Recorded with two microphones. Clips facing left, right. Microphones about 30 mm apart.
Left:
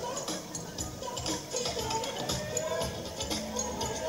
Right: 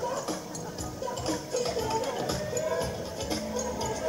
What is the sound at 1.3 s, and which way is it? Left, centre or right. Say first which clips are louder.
Music: right 4 dB; centre.